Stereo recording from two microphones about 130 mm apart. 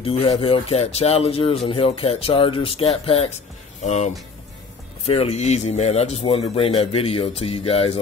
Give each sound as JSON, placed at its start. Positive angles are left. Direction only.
{"t": 0.0, "sound": "speech", "side_deg": 50}
{"t": 3.8, "sound": "speech", "side_deg": 60}
{"t": 5.0, "sound": "speech", "side_deg": 50}